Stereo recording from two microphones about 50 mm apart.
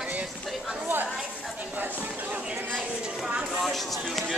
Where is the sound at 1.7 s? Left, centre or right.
Right.